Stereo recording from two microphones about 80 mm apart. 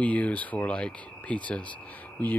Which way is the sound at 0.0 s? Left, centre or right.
Centre.